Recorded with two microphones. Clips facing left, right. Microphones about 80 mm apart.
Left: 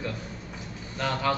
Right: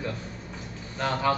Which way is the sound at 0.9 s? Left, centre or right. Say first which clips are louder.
Right 1 dB; centre.